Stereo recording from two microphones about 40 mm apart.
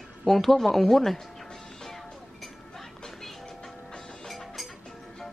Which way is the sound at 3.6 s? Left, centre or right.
Centre.